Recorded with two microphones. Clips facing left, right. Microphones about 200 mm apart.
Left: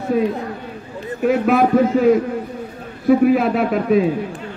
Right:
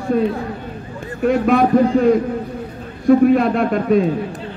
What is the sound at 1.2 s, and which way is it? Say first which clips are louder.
A man's voice: right 1 dB; 5° left (ahead or behind).